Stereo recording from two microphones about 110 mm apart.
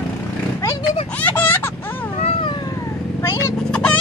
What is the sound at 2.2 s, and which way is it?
Cat, 50° left (ahead or behind).